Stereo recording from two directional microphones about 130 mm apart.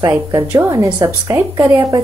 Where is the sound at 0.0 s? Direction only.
20° right (ahead or behind).